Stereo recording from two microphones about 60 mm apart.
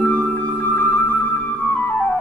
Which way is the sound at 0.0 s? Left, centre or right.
Left.